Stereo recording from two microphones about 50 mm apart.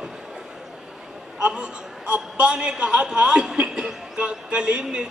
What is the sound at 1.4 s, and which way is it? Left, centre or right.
A man's voice, centre.